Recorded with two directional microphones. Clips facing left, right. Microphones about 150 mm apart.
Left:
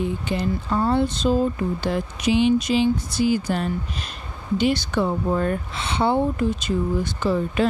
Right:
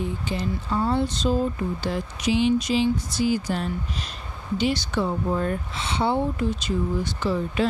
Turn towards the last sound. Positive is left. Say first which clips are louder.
# left 3 dB
turn(degrees=50)  # may be behind; listen again after turning